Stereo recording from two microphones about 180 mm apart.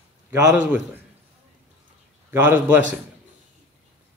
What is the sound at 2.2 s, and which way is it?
Speech, 10° right (ahead or behind).